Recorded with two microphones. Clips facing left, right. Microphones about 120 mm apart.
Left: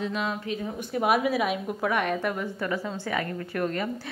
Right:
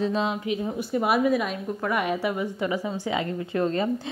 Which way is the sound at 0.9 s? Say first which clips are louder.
Right 2 dB; centre (ahead or behind).